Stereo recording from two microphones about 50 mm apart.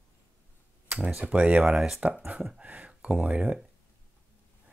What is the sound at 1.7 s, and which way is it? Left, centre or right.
Speech, centre.